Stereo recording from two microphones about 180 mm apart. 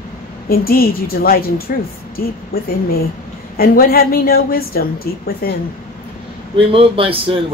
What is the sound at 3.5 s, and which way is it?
A woman's voice, 55° left (ahead or behind).